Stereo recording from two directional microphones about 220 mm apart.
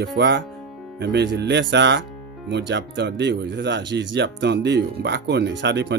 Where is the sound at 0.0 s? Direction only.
50° right (ahead or behind).